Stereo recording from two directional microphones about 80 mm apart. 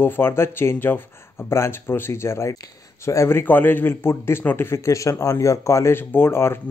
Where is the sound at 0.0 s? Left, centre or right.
Left.